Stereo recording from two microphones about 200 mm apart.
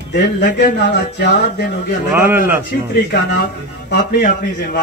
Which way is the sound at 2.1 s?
10° right (ahead or behind).